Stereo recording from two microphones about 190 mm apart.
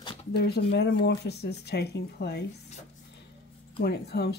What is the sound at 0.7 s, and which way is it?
Speech, 65° left (ahead or behind).